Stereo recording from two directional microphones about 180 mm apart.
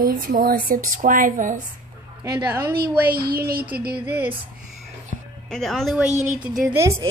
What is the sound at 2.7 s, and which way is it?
A woman's voice, 60° right (ahead or behind).